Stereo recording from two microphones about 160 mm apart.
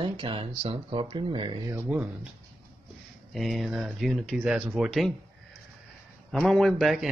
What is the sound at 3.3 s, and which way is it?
Speech, centre (ahead or behind).